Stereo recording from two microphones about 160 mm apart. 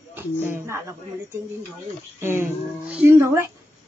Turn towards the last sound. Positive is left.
turn(degrees=-15)  # may be behind; listen again after turning